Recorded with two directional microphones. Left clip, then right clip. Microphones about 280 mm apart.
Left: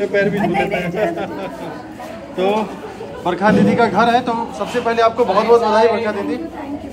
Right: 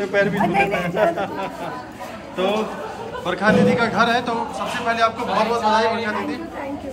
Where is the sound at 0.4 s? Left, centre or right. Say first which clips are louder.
Even; right.